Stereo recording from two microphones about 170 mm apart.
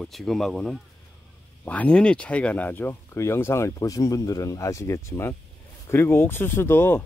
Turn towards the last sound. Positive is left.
turn(degrees=15)  # may be behind; listen again after turning